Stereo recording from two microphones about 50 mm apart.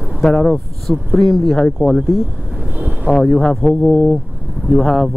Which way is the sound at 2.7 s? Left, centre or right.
Right.